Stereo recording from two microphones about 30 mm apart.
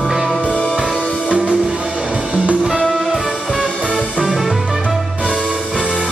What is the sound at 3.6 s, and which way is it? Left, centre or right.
Music, left.